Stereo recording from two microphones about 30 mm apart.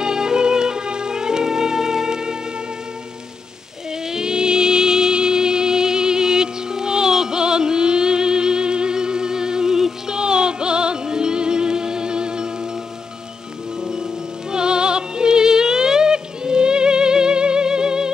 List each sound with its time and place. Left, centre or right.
0.0 s music: right
4.1 s music: right
10.1 s music: right
13.7 s music: centre